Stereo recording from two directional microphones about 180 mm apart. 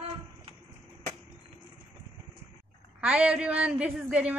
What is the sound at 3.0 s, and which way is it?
A woman's voice, 5° right (ahead or behind).